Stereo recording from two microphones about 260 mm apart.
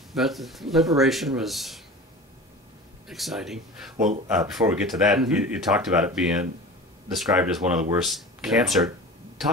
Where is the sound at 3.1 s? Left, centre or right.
Centre.